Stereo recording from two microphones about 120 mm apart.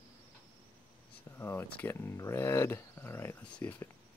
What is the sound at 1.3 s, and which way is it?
Speech, 20° left (ahead or behind).